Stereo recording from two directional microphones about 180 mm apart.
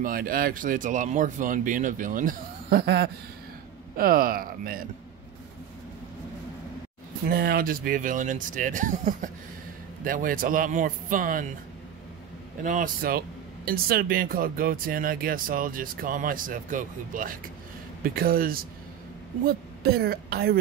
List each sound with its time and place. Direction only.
0.0 s speech: 55° right (ahead or behind)
7.2 s speech: 55° right (ahead or behind)
12.6 s speech: 50° right (ahead or behind)